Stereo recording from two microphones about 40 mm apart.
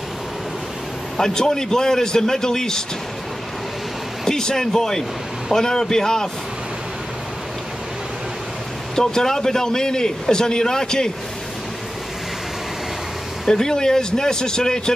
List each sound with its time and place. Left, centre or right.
1.1 s a man's voice: centre
4.2 s a man's voice: centre
8.9 s a man's voice: centre
13.5 s a man's voice: centre